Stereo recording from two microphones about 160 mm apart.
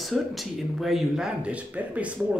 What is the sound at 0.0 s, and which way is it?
Speech, centre (ahead or behind).